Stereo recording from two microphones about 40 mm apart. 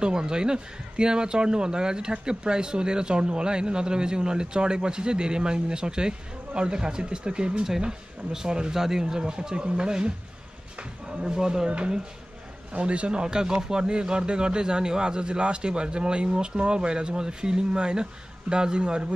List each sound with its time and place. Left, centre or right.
0.0 s a man's voice: right
9.0 s a man's voice: right